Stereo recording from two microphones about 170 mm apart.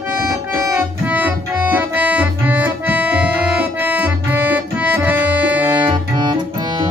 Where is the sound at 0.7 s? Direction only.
10° right (ahead or behind).